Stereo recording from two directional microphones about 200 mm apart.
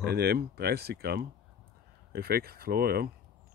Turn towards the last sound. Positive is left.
turn(degrees=-50)  # may be behind; listen again after turning